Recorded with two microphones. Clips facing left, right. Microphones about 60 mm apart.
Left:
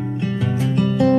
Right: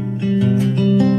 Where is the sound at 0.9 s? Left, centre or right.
Centre.